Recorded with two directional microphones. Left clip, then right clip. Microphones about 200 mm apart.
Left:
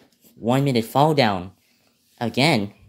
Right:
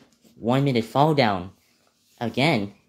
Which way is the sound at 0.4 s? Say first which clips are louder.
Left 2 dB; 10° left (ahead or behind).